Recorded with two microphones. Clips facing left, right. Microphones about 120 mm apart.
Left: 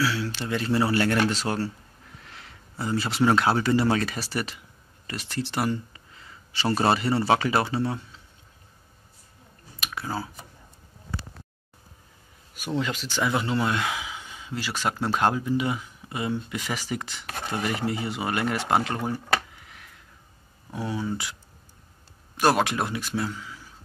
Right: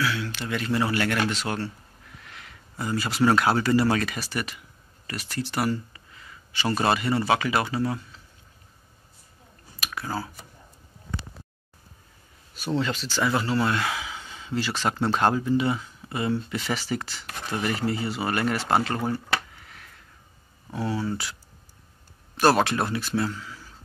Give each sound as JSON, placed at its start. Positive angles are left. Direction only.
{"t": 0.0, "sound": "speech", "side_deg": 30}
{"t": 9.8, "sound": "speech", "side_deg": 20}
{"t": 12.5, "sound": "speech", "side_deg": 15}
{"t": 19.6, "sound": "a sound", "side_deg": 15}
{"t": 20.7, "sound": "speech", "side_deg": 15}
{"t": 22.4, "sound": "speech", "side_deg": 15}